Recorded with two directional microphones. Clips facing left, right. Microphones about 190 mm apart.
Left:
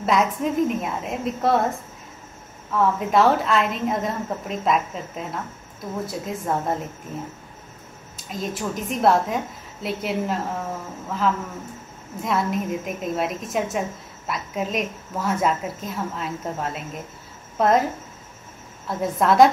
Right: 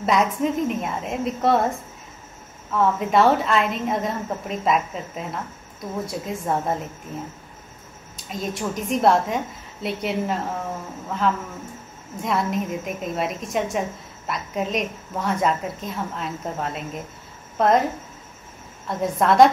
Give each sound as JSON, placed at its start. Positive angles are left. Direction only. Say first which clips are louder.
{"t": 0.0, "sound": "a woman's voice", "louder": "right 1 dB", "side_deg": 0}
{"t": 2.7, "sound": "a woman's voice", "louder": "even", "side_deg": 0}
{"t": 8.3, "sound": "a woman's voice", "louder": "even", "side_deg": 0}
{"t": 18.9, "sound": "a woman's voice", "louder": "even", "side_deg": 0}